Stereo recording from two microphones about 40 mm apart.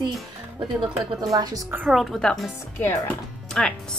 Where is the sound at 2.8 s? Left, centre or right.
Left.